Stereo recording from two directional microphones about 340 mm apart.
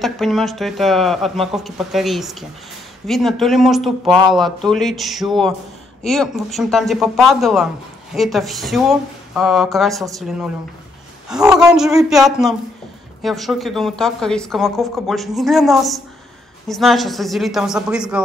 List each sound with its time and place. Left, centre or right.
0.0 s speech: centre